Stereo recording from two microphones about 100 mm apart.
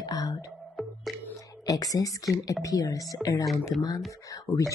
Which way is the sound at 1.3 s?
35° left (ahead or behind).